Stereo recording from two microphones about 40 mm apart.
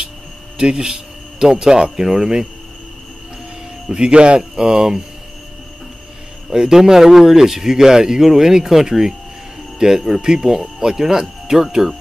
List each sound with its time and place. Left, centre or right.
0.6 s speech: right
3.9 s speech: right
6.5 s speech: centre